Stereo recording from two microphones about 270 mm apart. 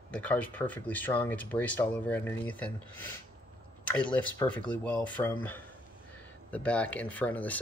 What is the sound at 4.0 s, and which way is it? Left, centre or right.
Speech, centre.